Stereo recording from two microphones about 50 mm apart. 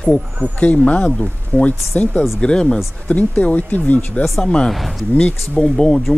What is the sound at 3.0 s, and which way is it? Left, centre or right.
Speech, left.